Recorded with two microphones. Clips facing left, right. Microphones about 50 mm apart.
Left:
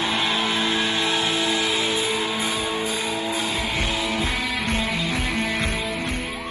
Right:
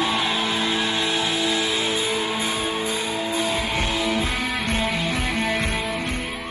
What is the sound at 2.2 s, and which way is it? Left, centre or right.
Music, right.